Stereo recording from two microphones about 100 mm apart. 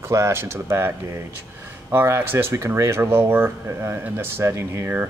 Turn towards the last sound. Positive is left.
turn(degrees=-25)  # may be behind; listen again after turning